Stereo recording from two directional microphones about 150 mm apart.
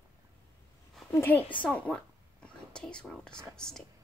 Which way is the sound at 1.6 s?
5° left (ahead or behind).